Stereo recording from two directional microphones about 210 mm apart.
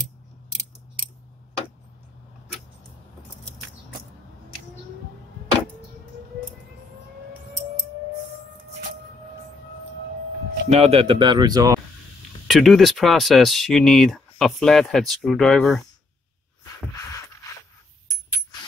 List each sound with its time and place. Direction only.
10.7 s speech: 30° right (ahead or behind)
12.4 s speech: centre (ahead or behind)